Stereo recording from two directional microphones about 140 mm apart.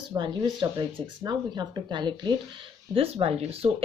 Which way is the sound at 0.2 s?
35° right (ahead or behind).